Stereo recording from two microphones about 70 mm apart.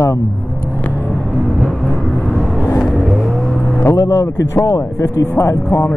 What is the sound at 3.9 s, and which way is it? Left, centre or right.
Speech, left.